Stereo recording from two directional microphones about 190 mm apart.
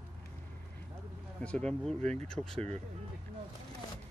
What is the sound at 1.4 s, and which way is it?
Speech, 5° left (ahead or behind).